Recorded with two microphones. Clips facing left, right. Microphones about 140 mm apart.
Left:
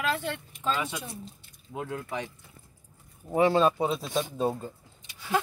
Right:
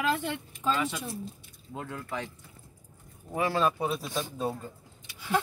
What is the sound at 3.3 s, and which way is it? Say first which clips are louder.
Speech: left 5 dB; 25° left (ahead or behind).